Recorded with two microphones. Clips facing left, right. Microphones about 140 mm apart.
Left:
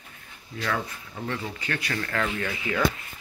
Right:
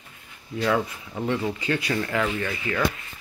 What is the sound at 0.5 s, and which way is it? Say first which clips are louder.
Speech: right 6 dB; 20° right (ahead or behind).